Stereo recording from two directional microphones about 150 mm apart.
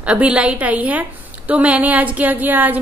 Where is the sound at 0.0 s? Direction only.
10° right (ahead or behind).